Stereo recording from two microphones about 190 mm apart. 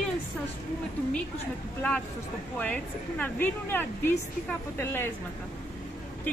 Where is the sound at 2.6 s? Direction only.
10° left (ahead or behind).